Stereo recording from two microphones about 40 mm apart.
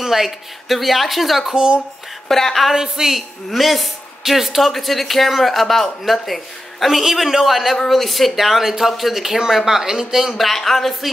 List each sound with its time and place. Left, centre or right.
0.0 s speech: centre
1.5 s speech: centre
2.2 s a woman's voice: centre
2.7 s a man's voice: centre
3.4 s a man's voice: centre
10.3 s speech: centre